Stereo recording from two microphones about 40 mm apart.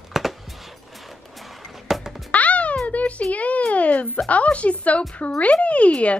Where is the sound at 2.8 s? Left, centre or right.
Left.